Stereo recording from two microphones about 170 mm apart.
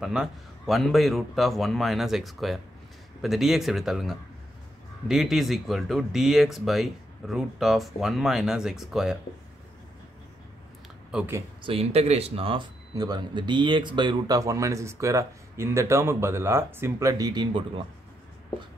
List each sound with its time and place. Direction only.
0.0 s speech: 5° right (ahead or behind)
11.1 s speech: 5° right (ahead or behind)
11.6 s speech: 35° right (ahead or behind)